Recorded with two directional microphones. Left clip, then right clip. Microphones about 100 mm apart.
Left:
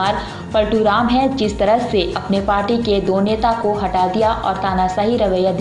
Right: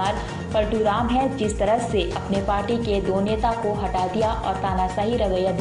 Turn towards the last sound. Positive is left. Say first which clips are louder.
# left 6 dB
turn(degrees=0)  # may be behind; listen again after turning